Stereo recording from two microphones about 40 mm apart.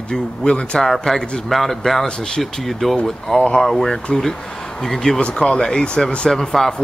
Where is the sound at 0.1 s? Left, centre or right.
Left.